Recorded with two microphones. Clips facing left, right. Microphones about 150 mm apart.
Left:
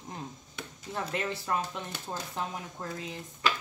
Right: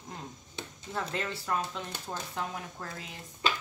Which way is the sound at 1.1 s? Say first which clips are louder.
Left 2 dB; 20° left (ahead or behind).